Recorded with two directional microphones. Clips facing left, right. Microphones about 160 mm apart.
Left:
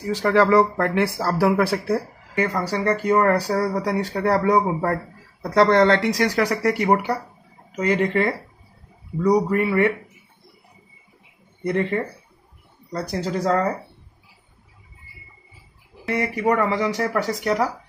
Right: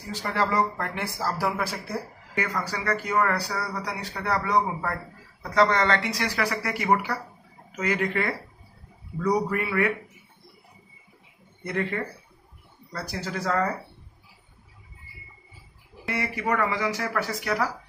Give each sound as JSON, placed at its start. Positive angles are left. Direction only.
{"t": 0.0, "sound": "speech", "side_deg": 65}
{"t": 2.3, "sound": "speech", "side_deg": 35}
{"t": 9.3, "sound": "speech", "side_deg": 30}
{"t": 11.6, "sound": "speech", "side_deg": 30}
{"t": 13.1, "sound": "speech", "side_deg": 35}
{"t": 16.2, "sound": "speech", "side_deg": 35}